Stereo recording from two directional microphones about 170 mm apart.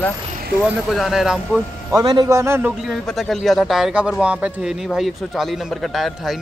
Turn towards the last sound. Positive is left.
turn(degrees=0)  # may be behind; listen again after turning